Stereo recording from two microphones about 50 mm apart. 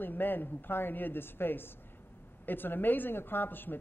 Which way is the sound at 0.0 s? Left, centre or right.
Left.